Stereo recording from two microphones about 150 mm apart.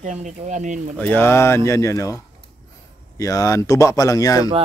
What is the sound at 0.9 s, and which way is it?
Speech, 10° left (ahead or behind).